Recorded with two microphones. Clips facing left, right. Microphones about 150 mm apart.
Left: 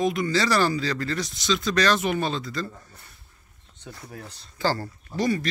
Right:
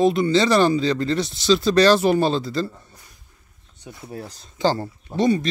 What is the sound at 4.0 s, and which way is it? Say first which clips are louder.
Speech: right 9 dB; 30° right (ahead or behind).